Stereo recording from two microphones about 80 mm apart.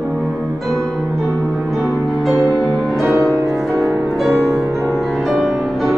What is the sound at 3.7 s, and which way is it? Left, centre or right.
Music, centre.